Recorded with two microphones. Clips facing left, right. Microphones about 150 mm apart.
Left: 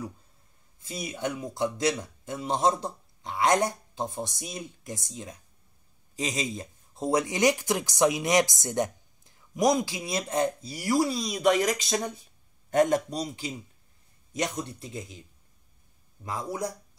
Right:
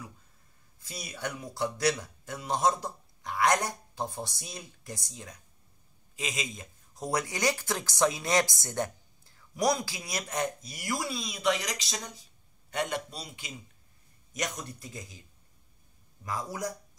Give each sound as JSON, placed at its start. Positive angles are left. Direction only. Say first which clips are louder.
{"t": 0.7, "sound": "speech", "louder": "left 6 dB", "side_deg": 20}
{"t": 6.1, "sound": "a man's voice", "louder": "left 6 dB", "side_deg": 35}
{"t": 14.3, "sound": "speech", "louder": "left 5 dB", "side_deg": 30}
{"t": 16.3, "sound": "speech", "louder": "left 3 dB", "side_deg": 25}